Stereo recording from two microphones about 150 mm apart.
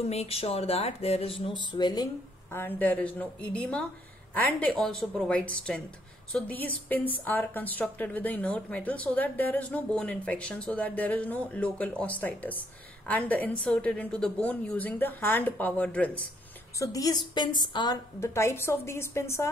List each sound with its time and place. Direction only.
0.0 s speech: 45° left (ahead or behind)
2.5 s a woman's voice: 15° left (ahead or behind)
16.7 s a woman's voice: 20° left (ahead or behind)